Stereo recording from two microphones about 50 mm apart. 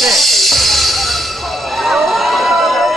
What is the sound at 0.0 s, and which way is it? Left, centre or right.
Music, centre.